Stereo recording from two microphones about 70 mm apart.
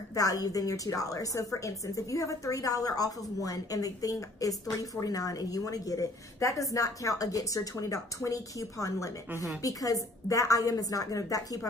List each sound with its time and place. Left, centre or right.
0.1 s a woman's voice: left